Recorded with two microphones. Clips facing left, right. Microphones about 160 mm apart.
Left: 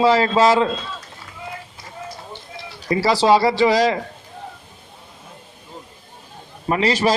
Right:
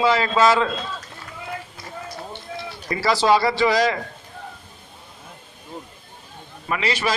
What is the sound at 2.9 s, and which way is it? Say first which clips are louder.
A man's voice: left 3 dB; 30° left (ahead or behind).